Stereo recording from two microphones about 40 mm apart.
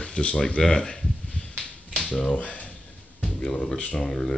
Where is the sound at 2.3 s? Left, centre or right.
Left.